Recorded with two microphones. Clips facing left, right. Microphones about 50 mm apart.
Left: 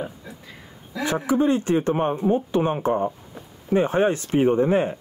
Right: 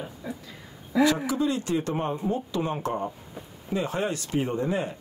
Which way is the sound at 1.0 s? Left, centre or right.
Left.